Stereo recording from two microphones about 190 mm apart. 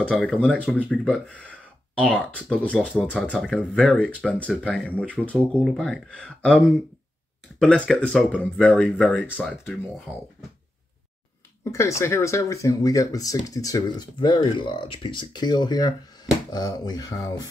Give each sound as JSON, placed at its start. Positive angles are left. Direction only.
{"t": 0.1, "sound": "speech", "side_deg": 5}
{"t": 11.6, "sound": "speech", "side_deg": 15}